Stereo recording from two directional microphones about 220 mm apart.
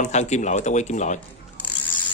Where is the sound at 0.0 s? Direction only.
30° left (ahead or behind).